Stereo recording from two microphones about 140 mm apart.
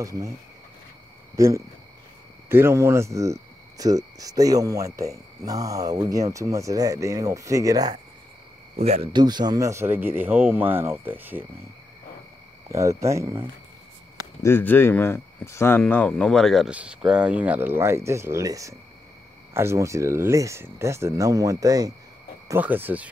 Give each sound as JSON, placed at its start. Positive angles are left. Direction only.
{"t": 0.0, "sound": "speech", "side_deg": -25}
{"t": 1.3, "sound": "speech", "side_deg": -20}
{"t": 8.7, "sound": "speech", "side_deg": -45}
{"t": 9.1, "sound": "speech", "side_deg": -30}
{"t": 12.6, "sound": "speech", "side_deg": -20}
{"t": 14.4, "sound": "speech", "side_deg": 15}
{"t": 22.5, "sound": "speech", "side_deg": -15}